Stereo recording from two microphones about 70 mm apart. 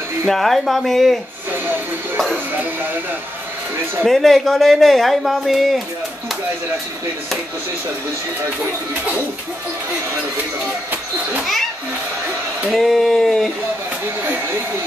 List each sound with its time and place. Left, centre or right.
0.3 s speech: centre
2.3 s speech: right
4.0 s speech: centre
12.7 s speech: centre
14.2 s speech: right